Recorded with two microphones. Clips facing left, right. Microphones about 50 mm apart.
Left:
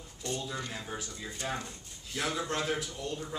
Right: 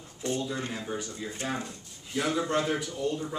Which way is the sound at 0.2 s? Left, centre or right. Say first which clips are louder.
Right 6 dB; right.